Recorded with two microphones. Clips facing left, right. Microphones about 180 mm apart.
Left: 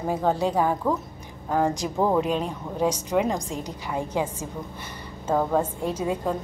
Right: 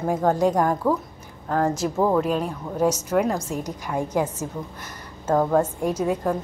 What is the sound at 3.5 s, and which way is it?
Speech, 10° right (ahead or behind).